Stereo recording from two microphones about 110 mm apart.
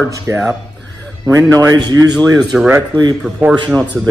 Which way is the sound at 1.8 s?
35° right (ahead or behind).